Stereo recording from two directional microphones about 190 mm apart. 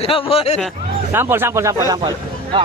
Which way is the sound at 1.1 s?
10° right (ahead or behind).